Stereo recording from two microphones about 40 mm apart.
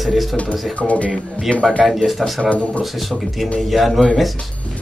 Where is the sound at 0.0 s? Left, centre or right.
Centre.